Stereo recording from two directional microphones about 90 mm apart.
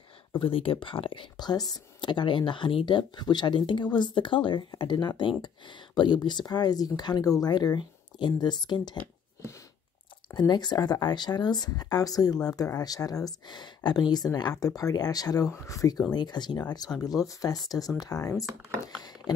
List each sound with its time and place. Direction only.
0.4 s speech: 90° left; by 1.2 s 75° left (ahead or behind)
1.3 s speech: 50° left (ahead or behind)
10.5 s speech: 50° left (ahead or behind)
16.1 s speech: 50° left (ahead or behind)